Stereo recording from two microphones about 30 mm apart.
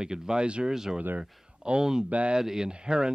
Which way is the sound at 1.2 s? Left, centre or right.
Right.